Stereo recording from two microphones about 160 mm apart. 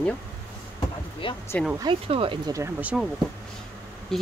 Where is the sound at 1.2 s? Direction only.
35° left (ahead or behind).